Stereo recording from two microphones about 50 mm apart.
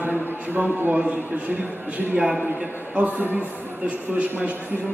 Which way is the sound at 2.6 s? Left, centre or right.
Right.